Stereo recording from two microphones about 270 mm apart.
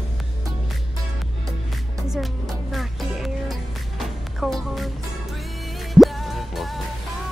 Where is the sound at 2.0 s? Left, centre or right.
Centre.